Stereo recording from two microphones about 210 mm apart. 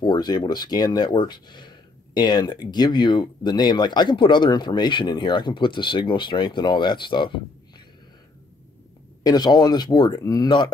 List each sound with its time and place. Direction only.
0.0 s speech: 20° left (ahead or behind)
9.2 s speech: 20° left (ahead or behind)